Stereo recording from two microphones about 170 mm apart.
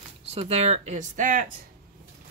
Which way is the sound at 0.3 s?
40° right (ahead or behind).